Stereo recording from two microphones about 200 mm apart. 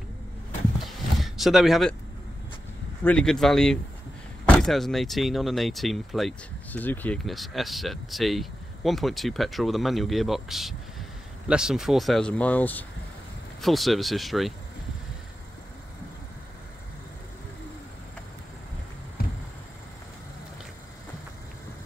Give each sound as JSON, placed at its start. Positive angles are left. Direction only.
{"t": 0.7, "sound": "a sound", "side_deg": 0}
{"t": 3.0, "sound": "speech", "side_deg": 5}
{"t": 19.2, "sound": "vehicle", "side_deg": 50}